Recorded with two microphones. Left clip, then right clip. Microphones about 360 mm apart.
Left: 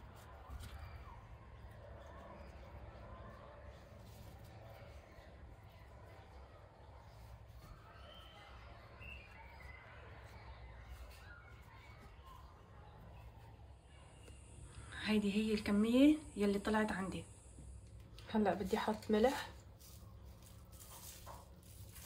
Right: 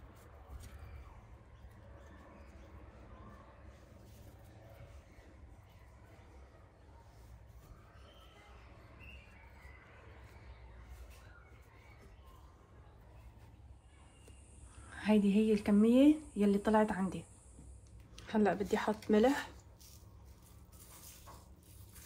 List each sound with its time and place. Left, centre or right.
14.9 s speech: centre
18.1 s speech: right